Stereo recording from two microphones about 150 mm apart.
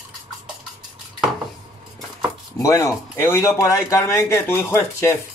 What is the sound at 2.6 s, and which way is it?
Speech, 20° left (ahead or behind).